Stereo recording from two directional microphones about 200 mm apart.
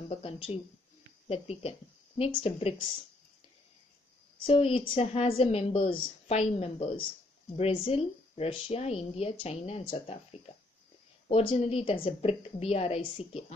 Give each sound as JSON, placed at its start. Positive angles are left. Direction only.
{"t": 0.1, "sound": "a woman's voice", "side_deg": 30}
{"t": 4.5, "sound": "a woman's voice", "side_deg": 30}